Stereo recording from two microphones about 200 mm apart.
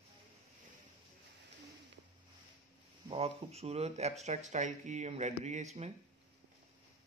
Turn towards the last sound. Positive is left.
turn(degrees=-35)  # may be behind; listen again after turning